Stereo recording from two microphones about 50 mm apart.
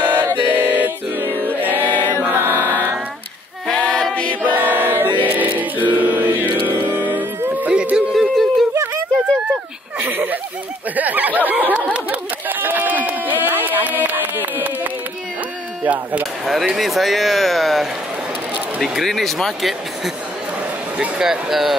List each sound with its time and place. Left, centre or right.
0.0 s chant: right
0.5 s choir: right
1.9 s choir: left
2.3 s chant: right
3.6 s choir: centre
4.6 s chant: right
8.1 s a sound: centre
10.0 s a sound: right
16.4 s speech: centre
21.2 s speech: centre